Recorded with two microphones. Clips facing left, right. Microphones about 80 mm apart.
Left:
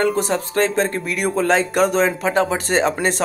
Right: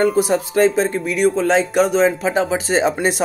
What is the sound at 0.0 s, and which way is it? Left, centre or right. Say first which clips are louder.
Speech: right 3 dB; centre.